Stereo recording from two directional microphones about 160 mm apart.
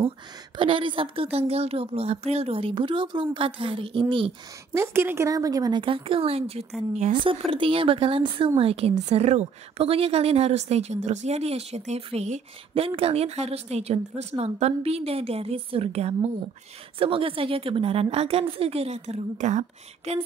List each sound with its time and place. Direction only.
0.6 s a woman's voice: 35° right (ahead or behind)
4.7 s a woman's voice: 15° right (ahead or behind); by 19.6 s 50° right (ahead or behind)